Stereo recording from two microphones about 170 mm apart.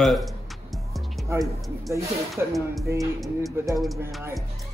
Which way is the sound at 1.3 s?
15° right (ahead or behind).